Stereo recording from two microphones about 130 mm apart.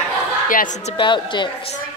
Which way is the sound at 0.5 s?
80° left.